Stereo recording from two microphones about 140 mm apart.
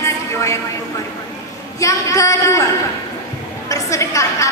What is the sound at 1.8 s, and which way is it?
A woman's voice, 20° left (ahead or behind).